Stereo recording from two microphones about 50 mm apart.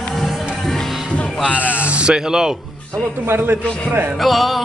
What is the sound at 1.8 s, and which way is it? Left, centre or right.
Speech, right.